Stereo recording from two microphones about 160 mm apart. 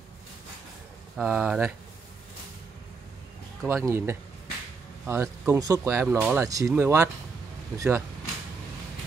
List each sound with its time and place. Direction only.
1.1 s speech: 5° right (ahead or behind)
3.6 s speech: 15° right (ahead or behind)
6.1 s speech: 5° right (ahead or behind)
6.4 s speech: 20° right (ahead or behind)